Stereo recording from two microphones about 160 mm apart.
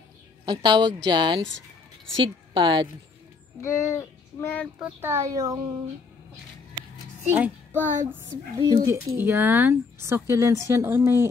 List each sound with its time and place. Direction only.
0.5 s a woman's voice: 30° right (ahead or behind)
3.6 s a sound: 15° left (ahead or behind)
4.7 s a woman's voice: 15° right (ahead or behind)
7.2 s a child's voice: 10° right (ahead or behind)
8.5 s speech: 20° right (ahead or behind)